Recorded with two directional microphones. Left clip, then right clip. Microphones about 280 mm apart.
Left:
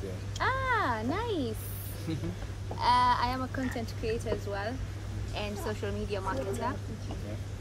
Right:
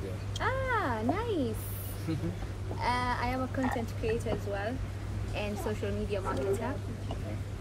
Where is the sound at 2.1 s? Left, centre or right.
Left.